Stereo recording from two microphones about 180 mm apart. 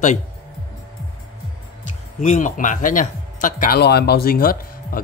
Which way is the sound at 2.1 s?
45° left (ahead or behind).